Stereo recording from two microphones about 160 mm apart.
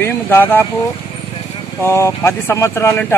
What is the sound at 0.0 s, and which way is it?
Speech, 15° left (ahead or behind).